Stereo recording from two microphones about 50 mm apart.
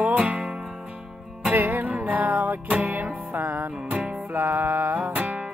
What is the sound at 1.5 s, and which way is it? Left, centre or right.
Music, right.